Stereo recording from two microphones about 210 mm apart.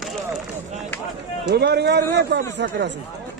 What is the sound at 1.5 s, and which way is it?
Speech, 50° right (ahead or behind).